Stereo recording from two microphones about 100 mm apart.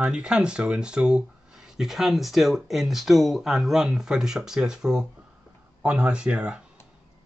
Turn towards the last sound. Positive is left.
turn(degrees=-10)  # may be behind; listen again after turning